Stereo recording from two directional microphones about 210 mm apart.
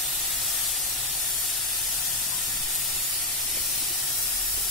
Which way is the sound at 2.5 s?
Centre (ahead or behind).